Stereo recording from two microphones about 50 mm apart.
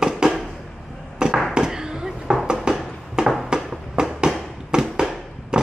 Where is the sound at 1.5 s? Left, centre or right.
Centre.